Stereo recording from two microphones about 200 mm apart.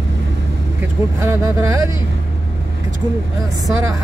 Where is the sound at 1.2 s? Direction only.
15° right (ahead or behind).